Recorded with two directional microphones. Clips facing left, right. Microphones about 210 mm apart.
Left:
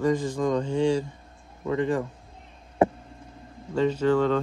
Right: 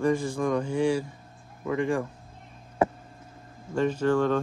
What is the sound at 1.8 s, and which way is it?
Speech, 20° left (ahead or behind).